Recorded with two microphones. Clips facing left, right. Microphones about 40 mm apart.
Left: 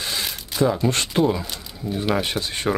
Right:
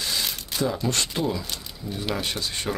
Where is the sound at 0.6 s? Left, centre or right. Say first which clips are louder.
Left 5 dB; centre.